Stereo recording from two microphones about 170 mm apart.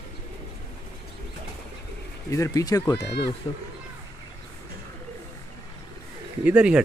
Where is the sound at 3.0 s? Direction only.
85° left.